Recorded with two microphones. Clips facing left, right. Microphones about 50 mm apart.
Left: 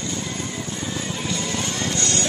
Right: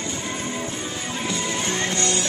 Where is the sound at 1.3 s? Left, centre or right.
Centre.